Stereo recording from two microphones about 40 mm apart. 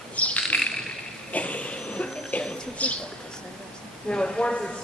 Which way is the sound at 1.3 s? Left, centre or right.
Left.